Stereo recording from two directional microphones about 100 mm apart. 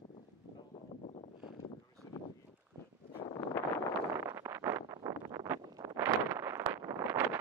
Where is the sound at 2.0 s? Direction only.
35° left (ahead or behind).